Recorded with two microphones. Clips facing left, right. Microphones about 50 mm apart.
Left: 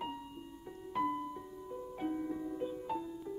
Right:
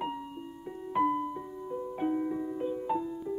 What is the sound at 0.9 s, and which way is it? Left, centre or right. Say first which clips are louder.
Music: right 7 dB; right.